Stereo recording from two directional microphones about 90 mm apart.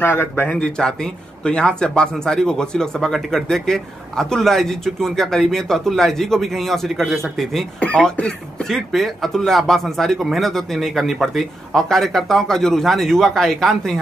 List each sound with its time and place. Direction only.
0.0 s speech: 25° left (ahead or behind)
0.5 s speech: 10° left (ahead or behind)
7.8 s speech: 15° left (ahead or behind)